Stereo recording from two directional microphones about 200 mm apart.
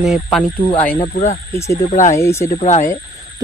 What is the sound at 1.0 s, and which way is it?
Speech, 35° left (ahead or behind).